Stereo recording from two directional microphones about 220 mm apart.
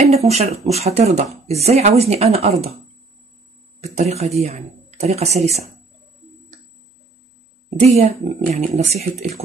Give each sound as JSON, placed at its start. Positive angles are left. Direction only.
{"t": 0.0, "sound": "speech", "side_deg": -30}
{"t": 3.8, "sound": "speech", "side_deg": -30}
{"t": 7.9, "sound": "speech", "side_deg": -30}